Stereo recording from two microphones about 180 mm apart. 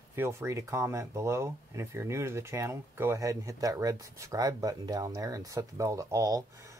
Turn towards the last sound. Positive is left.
turn(degrees=-20)  # may be behind; listen again after turning